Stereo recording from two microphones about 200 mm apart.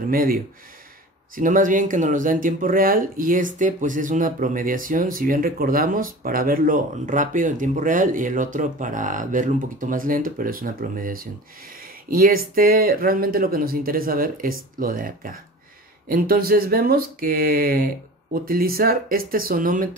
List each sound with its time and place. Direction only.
0.1 s speech: 45° right (ahead or behind)